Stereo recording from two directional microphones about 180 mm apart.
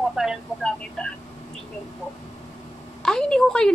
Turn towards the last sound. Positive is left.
turn(degrees=5)  # may be behind; listen again after turning